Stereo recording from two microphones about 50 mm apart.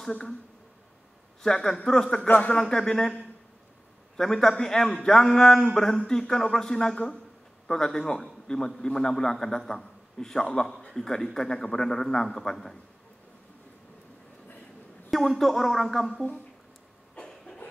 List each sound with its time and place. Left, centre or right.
1.4 s a man's voice: centre
2.2 s speech: left
2.5 s a man's voice: centre
15.0 s a man's voice: centre
17.1 s vehicle: centre